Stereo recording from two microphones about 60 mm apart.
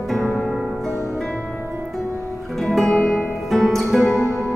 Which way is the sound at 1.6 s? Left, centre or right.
Centre.